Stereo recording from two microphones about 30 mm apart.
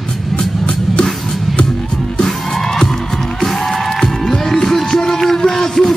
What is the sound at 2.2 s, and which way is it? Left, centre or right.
Music, centre.